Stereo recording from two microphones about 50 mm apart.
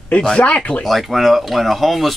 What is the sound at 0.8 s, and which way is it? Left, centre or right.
Speech, centre.